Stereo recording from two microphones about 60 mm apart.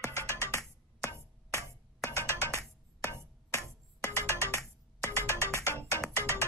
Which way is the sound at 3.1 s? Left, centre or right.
Left.